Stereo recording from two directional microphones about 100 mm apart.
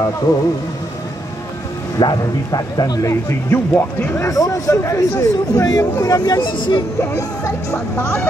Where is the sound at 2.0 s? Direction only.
40° left (ahead or behind).